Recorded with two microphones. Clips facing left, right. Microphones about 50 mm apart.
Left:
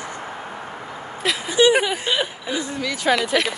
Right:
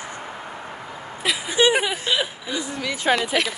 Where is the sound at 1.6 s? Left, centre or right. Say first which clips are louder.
Left 3 dB; right.